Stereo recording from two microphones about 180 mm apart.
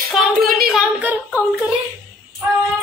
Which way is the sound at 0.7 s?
5° right (ahead or behind).